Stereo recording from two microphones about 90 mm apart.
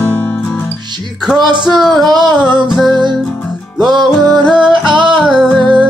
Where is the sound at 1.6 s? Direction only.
Centre (ahead or behind).